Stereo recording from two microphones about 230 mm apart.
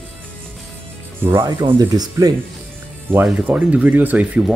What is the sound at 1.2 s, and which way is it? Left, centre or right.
Speech, centre.